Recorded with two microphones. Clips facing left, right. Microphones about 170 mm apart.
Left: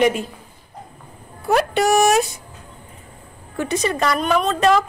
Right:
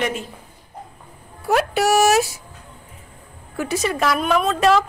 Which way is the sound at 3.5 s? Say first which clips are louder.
Left 1 dB; 5° right (ahead or behind).